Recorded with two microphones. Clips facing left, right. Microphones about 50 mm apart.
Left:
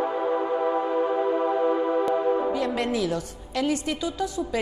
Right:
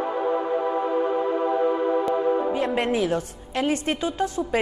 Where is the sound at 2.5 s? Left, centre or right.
Right.